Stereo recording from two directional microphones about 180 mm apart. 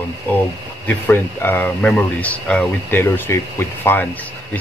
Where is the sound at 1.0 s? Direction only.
10° left (ahead or behind).